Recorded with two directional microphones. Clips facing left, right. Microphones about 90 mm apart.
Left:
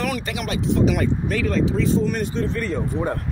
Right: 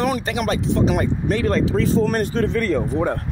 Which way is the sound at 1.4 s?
50° right (ahead or behind).